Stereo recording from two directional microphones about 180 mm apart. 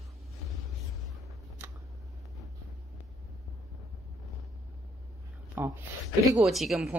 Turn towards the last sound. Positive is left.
turn(degrees=0)  # may be behind; listen again after turning